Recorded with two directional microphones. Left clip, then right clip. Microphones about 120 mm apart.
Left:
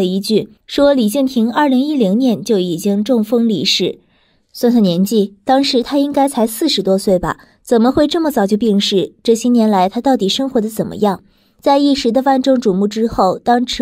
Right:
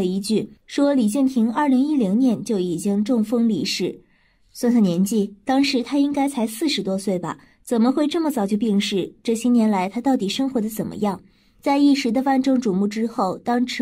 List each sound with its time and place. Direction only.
0.0 s a woman's voice: 45° left (ahead or behind)